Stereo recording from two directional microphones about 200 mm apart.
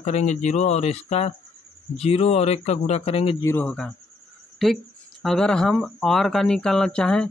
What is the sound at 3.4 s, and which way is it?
Speech, 10° left (ahead or behind).